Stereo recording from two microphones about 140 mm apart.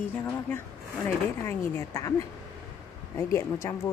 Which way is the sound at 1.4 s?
20° left (ahead or behind).